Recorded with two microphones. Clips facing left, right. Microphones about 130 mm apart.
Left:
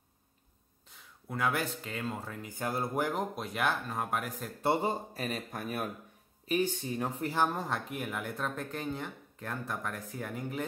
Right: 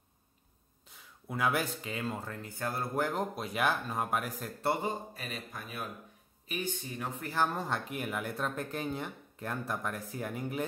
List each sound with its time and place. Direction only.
1.2 s speech: 5° right (ahead or behind)
3.3 s speech: 5° right (ahead or behind)
4.8 s speech: 40° left (ahead or behind)
5.5 s speech: 50° left (ahead or behind)
6.4 s speech: 40° left (ahead or behind)
7.6 s speech: centre (ahead or behind)